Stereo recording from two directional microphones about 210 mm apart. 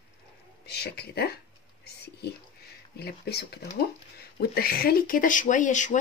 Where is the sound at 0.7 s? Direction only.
50° left (ahead or behind).